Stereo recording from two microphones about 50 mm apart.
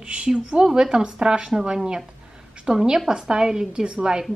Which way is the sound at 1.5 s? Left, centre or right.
Centre.